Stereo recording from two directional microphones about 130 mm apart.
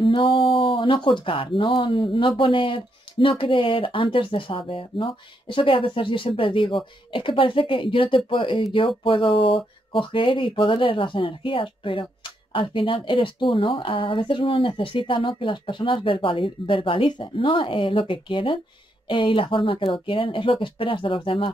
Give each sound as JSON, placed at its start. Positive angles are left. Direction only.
{"t": 0.0, "sound": "speech", "side_deg": 40}